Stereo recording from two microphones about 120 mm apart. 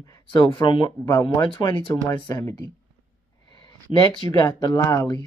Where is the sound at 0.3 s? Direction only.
40° left (ahead or behind).